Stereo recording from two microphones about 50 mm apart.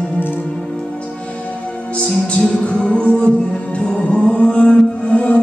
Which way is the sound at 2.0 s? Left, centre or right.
Centre.